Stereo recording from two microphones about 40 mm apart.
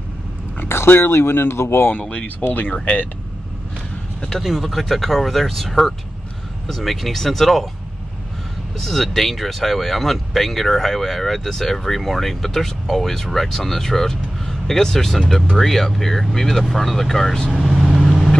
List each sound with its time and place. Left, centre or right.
0.7 s speech: left
1.9 s speech: left
4.4 s speech: centre
8.7 s speech: centre